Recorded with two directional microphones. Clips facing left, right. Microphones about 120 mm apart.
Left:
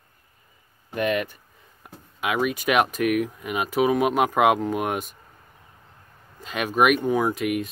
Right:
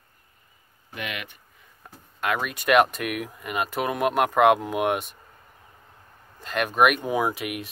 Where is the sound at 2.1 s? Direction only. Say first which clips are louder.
Left 3 dB; 5° left (ahead or behind).